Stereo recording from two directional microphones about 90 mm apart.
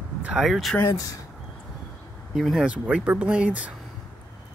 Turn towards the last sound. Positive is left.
turn(degrees=-15)  # may be behind; listen again after turning